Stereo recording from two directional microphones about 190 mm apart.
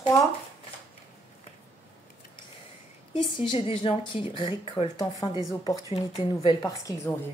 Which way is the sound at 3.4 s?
30° left (ahead or behind).